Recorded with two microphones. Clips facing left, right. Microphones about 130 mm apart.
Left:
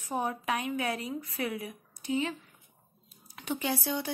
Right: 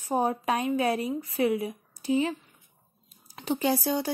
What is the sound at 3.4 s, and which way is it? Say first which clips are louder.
Speech: right 6 dB; 35° right (ahead or behind).